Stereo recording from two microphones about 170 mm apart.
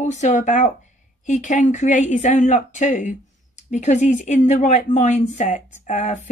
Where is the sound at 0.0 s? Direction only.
45° left (ahead or behind).